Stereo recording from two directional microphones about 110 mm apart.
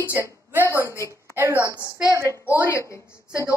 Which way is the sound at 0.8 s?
25° left (ahead or behind).